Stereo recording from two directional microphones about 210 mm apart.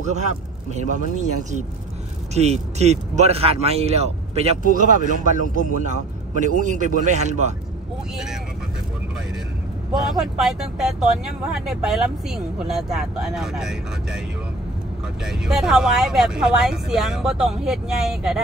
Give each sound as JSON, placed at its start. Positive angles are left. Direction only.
{"t": 0.0, "sound": "speech", "side_deg": -35}
{"t": 2.3, "sound": "speech", "side_deg": -30}
{"t": 10.0, "sound": "speech", "side_deg": 0}
{"t": 15.2, "sound": "speech", "side_deg": 0}